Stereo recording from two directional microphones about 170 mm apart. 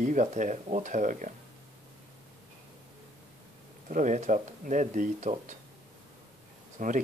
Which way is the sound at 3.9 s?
50° right (ahead or behind).